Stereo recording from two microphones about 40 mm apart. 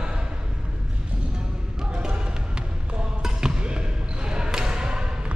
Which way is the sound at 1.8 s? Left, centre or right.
Right.